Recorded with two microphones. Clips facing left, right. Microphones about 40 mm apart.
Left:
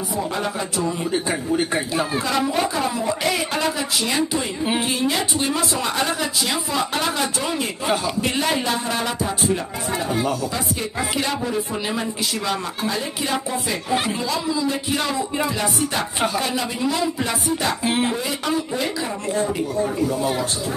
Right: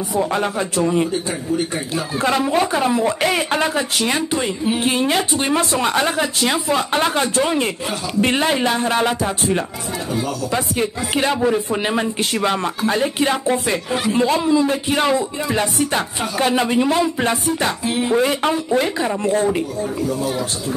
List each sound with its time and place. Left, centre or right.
0.3 s speech: right
1.1 s speech: left
2.2 s speech: right
2.7 s speech: right
4.8 s speech: right
16.3 s speech: right
17.8 s speech: centre
18.1 s speech: right
20.2 s speech: centre